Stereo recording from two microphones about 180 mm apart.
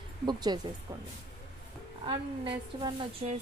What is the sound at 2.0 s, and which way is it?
Speech, 30° right (ahead or behind).